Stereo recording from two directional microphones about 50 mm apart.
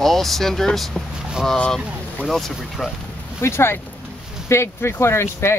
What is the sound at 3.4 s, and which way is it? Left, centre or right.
Speech, left.